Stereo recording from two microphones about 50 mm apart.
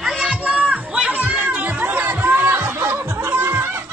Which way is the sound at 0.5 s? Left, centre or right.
Right.